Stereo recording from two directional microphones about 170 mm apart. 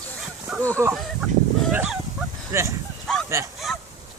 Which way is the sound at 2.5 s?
15° right (ahead or behind).